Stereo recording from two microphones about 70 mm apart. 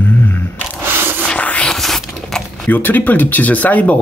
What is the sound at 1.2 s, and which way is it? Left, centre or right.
Music, centre.